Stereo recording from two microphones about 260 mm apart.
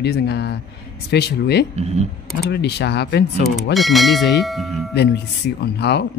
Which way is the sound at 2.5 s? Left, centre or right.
Left.